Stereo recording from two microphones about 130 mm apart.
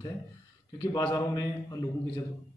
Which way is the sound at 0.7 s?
30° left (ahead or behind).